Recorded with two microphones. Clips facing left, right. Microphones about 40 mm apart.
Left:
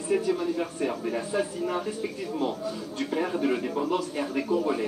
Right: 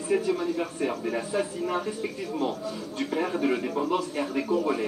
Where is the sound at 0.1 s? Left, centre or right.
Centre.